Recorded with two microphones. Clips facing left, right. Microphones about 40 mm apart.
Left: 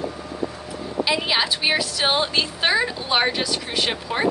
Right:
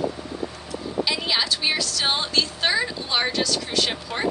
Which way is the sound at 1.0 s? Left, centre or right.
Centre.